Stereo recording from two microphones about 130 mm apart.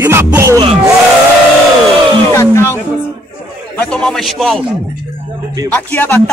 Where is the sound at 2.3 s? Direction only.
20° left (ahead or behind).